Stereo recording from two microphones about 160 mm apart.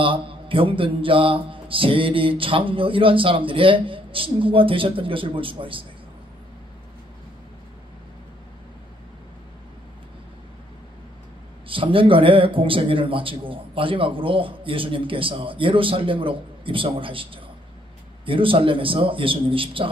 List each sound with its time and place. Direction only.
0.0 s a man's voice: 35° right (ahead or behind)
11.6 s a man's voice: 35° right (ahead or behind)